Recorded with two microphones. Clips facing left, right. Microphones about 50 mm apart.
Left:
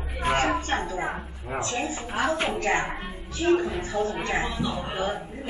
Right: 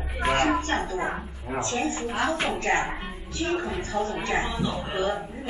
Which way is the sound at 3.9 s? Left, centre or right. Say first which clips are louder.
Left 1 dB; right.